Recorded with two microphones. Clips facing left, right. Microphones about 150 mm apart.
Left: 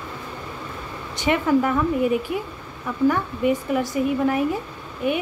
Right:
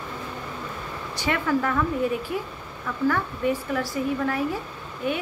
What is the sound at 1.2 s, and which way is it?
Speech, 20° left (ahead or behind).